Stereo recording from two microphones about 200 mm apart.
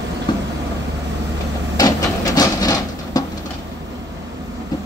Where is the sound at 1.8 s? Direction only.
20° left (ahead or behind).